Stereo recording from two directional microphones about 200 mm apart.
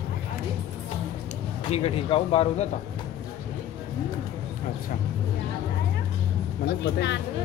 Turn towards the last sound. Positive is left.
turn(degrees=60)  # may be behind; listen again after turning